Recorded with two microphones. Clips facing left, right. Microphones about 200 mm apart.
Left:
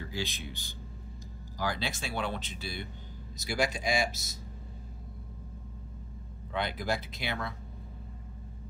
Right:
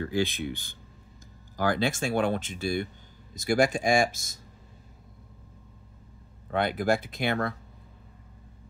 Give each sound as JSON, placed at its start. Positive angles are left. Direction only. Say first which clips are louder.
{"t": 0.0, "sound": "speech", "louder": "right 10 dB", "side_deg": -55}
{"t": 6.5, "sound": "speech", "louder": "right 7 dB", "side_deg": -55}